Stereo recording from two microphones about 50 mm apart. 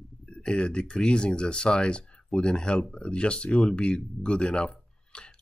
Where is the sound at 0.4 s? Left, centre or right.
Centre.